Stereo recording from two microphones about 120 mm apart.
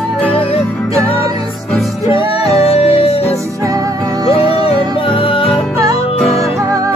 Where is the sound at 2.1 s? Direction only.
45° left (ahead or behind).